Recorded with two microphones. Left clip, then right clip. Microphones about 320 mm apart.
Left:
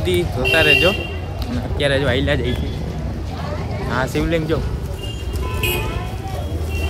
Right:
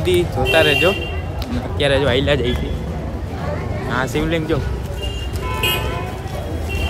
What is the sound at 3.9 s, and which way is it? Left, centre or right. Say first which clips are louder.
Speech: even; centre.